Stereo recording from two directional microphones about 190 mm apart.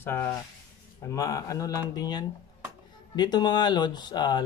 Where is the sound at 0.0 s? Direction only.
10° left (ahead or behind).